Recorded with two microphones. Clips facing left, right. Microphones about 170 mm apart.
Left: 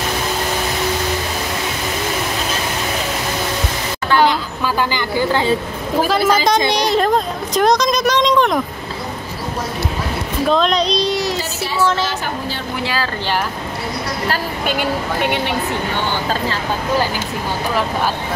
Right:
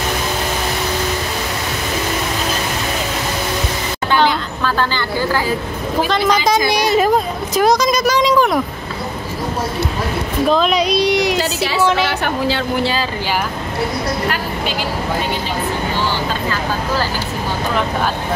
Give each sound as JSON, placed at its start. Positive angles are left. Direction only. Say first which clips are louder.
{"t": 4.2, "sound": "a sound", "louder": "left 1 dB", "side_deg": 10}
{"t": 6.0, "sound": "speech", "louder": "left 1 dB", "side_deg": 5}
{"t": 10.5, "sound": "speech", "louder": "even", "side_deg": -5}
{"t": 11.3, "sound": "a woman's voice", "louder": "right 3 dB", "side_deg": -80}
{"t": 12.8, "sound": "speech", "louder": "right 2 dB", "side_deg": -20}
{"t": 14.7, "sound": "speech", "louder": "left 3 dB", "side_deg": 60}